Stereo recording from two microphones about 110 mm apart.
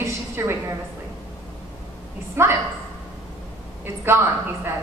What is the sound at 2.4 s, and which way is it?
Speech, 25° right (ahead or behind).